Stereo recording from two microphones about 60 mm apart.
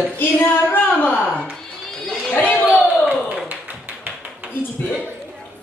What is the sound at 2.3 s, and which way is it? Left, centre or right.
Chatter, left.